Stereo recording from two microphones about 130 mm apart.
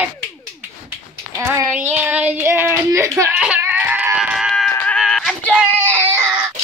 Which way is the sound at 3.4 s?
15° right (ahead or behind).